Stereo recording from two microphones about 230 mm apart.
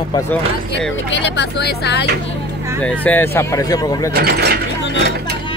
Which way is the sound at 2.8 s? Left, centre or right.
Centre.